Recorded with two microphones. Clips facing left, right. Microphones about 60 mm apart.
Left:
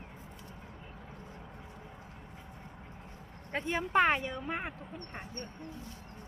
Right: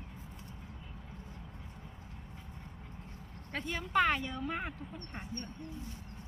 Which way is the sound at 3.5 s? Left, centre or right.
Left.